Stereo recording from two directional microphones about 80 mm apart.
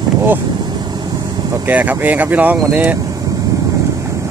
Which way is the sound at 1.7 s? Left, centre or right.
Right.